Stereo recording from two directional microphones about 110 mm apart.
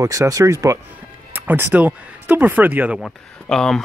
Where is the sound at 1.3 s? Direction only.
20° right (ahead or behind).